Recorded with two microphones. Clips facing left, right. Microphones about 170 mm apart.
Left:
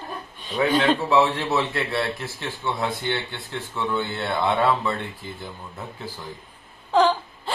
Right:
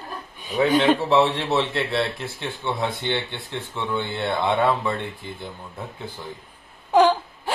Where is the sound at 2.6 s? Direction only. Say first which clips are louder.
Even; 20° right (ahead or behind).